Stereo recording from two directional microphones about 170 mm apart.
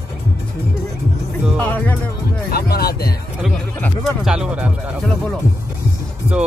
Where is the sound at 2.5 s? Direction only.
65° left (ahead or behind).